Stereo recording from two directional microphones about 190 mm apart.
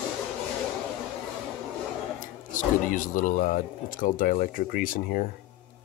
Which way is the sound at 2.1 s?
45° left (ahead or behind).